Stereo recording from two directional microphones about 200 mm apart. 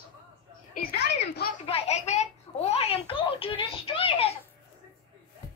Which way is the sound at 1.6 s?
30° left (ahead or behind).